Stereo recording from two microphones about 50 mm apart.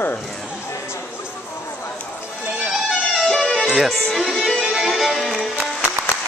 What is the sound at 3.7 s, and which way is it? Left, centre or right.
Speech, centre.